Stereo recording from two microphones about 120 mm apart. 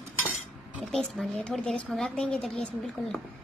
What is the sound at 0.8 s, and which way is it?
A woman's voice, 5° left (ahead or behind).